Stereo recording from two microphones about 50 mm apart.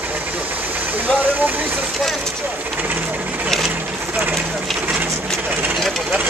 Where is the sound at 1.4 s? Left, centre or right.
Right.